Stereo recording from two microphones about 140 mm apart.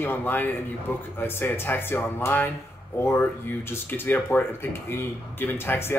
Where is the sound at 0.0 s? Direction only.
15° left (ahead or behind).